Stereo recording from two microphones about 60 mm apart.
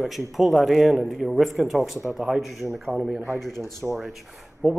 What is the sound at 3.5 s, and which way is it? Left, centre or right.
Speech, right.